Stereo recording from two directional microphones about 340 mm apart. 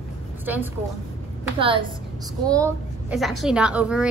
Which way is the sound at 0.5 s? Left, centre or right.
Centre.